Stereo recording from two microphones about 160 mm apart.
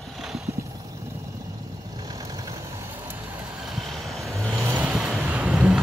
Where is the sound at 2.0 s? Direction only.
25° right (ahead or behind).